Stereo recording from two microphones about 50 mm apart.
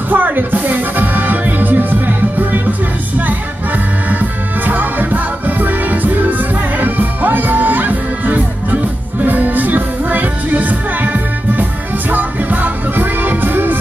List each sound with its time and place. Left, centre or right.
0.1 s music: right